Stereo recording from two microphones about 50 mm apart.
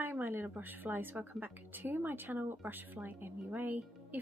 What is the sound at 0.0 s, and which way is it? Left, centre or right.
A woman's voice, right.